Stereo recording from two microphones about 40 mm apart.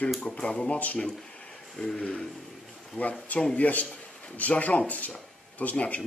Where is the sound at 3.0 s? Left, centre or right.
Left.